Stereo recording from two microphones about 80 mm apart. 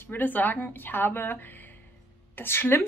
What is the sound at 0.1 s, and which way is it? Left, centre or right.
A woman's voice, left.